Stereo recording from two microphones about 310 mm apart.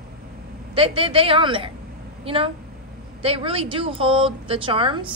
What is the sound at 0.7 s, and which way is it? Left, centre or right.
A woman's voice, centre.